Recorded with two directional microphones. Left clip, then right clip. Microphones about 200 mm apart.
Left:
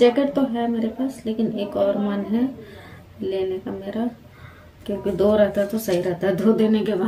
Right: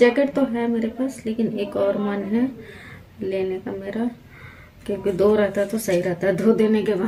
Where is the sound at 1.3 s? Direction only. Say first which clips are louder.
Left 1 dB; 30° right (ahead or behind).